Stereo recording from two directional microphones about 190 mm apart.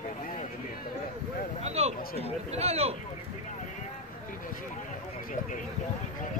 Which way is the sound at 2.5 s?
35° right (ahead or behind).